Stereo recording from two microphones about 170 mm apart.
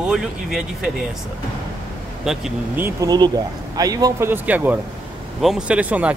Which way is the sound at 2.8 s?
20° right (ahead or behind).